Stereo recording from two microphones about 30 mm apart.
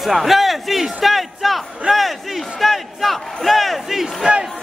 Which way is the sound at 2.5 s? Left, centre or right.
Centre.